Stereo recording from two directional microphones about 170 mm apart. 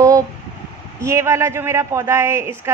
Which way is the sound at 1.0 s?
15° right (ahead or behind).